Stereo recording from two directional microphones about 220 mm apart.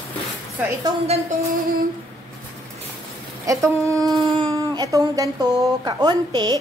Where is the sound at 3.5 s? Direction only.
15° right (ahead or behind).